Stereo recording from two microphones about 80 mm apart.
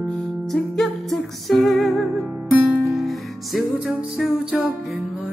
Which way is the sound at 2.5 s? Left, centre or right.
Centre.